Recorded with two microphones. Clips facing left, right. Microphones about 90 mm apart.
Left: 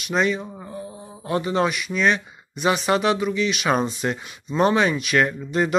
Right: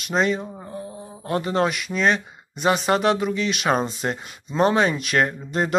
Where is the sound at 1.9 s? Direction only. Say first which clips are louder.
Even; 35° right (ahead or behind).